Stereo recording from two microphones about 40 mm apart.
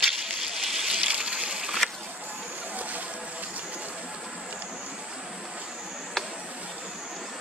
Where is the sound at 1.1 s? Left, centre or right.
Right.